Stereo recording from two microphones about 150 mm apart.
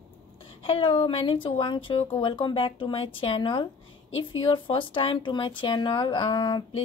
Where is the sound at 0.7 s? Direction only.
35° left (ahead or behind).